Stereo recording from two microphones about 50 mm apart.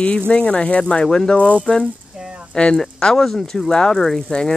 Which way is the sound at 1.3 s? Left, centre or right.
Left.